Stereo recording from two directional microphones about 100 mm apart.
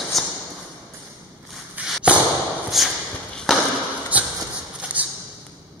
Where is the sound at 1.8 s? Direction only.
10° right (ahead or behind).